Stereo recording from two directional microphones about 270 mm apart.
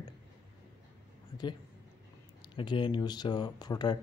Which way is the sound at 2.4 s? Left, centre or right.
Centre.